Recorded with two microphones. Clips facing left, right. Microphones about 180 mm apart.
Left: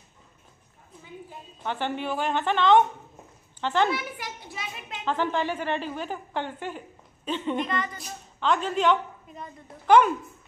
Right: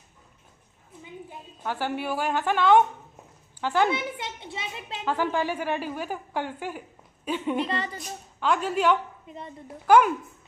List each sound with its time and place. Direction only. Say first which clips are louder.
1.6 s a woman's voice: even; 5° right (ahead or behind)
3.9 s a child's voice: right 2 dB; 25° right (ahead or behind)
5.0 s a woman's voice: even; 10° right (ahead or behind)
7.6 s a woman's voice: even; 30° right (ahead or behind)
8.0 s speech: even; 10° right (ahead or behind)
9.3 s a child's voice: right 3 dB; 25° right (ahead or behind)
9.8 s a woman's voice: even; 5° right (ahead or behind)